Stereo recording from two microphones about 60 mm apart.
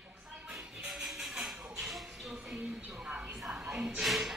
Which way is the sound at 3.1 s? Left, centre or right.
Centre.